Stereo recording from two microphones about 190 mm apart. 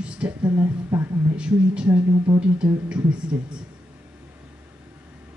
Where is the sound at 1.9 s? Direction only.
25° right (ahead or behind).